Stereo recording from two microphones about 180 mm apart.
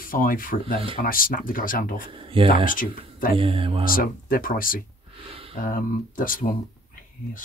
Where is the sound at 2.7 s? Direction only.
50° left (ahead or behind).